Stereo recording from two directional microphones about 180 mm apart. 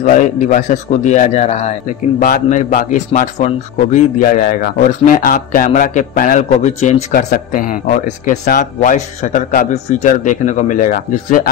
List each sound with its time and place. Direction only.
0.0 s a man's voice: 45° left (ahead or behind)
7.2 s a man's voice: 55° left (ahead or behind)